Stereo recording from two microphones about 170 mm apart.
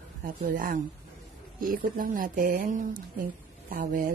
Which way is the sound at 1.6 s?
55° right (ahead or behind).